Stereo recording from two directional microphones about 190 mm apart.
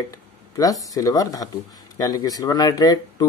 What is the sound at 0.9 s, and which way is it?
Speech, 20° left (ahead or behind).